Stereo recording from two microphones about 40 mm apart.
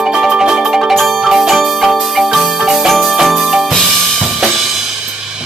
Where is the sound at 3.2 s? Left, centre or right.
Centre.